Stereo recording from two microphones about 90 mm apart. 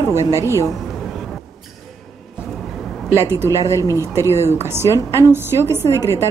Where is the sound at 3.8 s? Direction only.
35° right (ahead or behind).